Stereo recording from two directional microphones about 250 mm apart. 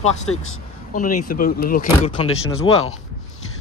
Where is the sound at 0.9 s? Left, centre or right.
Left.